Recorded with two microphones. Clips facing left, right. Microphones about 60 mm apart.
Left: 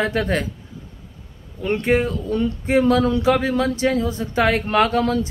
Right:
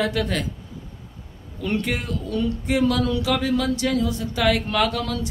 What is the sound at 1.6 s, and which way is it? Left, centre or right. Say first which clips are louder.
A man's voice: left 6 dB; left.